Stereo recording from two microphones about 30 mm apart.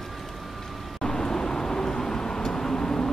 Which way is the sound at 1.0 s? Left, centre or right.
Centre.